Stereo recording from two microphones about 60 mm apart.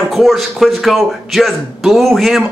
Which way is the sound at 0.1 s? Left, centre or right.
Centre.